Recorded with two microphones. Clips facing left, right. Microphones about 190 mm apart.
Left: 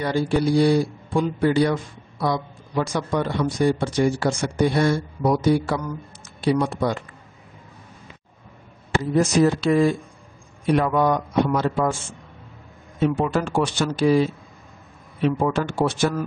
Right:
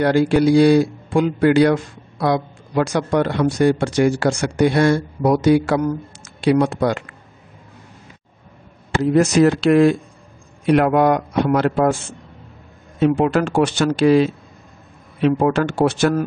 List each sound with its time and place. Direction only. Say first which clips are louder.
0.0 s speech: right 6 dB; 85° right
9.0 s a man's voice: right 5 dB; 70° right (ahead or behind)
13.0 s a man's voice: right 5 dB; 70° right (ahead or behind)